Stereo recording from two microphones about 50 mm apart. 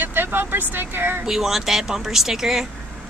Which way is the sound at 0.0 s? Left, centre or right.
Right.